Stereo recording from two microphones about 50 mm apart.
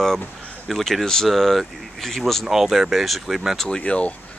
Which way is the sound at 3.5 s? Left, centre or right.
Centre.